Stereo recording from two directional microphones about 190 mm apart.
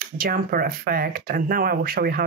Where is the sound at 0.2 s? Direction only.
50° right (ahead or behind).